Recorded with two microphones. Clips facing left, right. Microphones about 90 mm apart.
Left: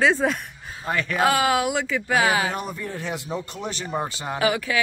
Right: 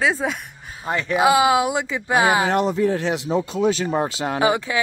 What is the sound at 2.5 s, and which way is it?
Speech, 85° right.